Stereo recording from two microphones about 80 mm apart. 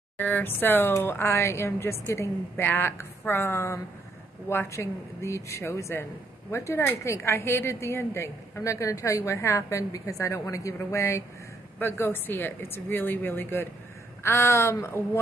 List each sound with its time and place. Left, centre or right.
0.2 s a woman's voice: left